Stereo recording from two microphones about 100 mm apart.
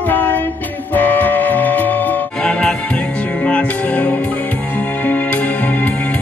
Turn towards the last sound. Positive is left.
turn(degrees=15)  # may be behind; listen again after turning